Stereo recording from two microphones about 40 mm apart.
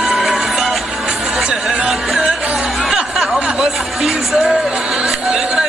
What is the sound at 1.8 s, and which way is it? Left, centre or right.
Music, centre.